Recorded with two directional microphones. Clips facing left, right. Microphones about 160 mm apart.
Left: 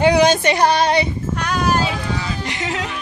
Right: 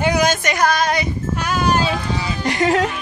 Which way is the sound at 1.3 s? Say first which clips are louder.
Right 1 dB; 5° right (ahead or behind).